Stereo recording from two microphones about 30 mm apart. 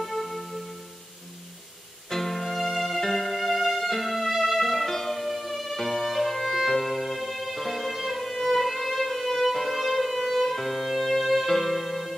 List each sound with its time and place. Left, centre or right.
0.0 s music: centre
2.0 s music: centre